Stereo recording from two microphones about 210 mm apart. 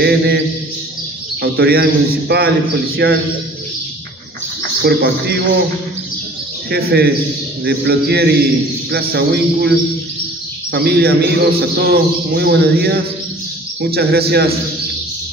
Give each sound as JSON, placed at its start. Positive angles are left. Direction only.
{"t": 0.0, "sound": "speech", "side_deg": -50}
{"t": 1.4, "sound": "speech", "side_deg": -50}
{"t": 4.8, "sound": "speech", "side_deg": -50}
{"t": 6.7, "sound": "speech", "side_deg": -50}